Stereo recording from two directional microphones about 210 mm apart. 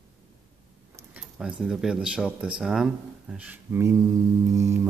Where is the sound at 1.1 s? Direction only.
5° right (ahead or behind).